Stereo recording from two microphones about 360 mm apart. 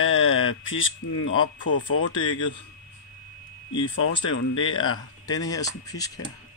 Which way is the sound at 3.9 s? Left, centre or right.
Left.